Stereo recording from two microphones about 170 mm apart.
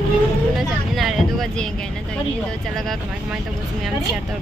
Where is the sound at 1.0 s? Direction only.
Centre (ahead or behind).